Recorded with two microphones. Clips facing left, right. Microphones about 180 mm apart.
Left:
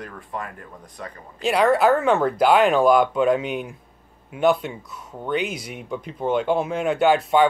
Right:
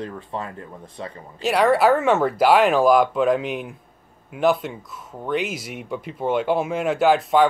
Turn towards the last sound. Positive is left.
turn(degrees=0)  # may be behind; listen again after turning